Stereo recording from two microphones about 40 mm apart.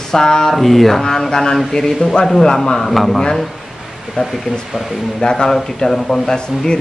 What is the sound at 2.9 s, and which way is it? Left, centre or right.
Speech, centre.